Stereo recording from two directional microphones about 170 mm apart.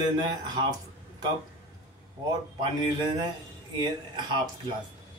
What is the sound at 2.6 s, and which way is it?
Speech, 25° right (ahead or behind).